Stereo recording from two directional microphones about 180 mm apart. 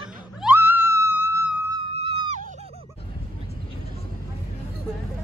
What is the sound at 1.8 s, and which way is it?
Screaming, 30° right (ahead or behind).